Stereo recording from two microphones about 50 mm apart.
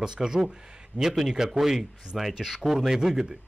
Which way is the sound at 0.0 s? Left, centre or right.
Centre.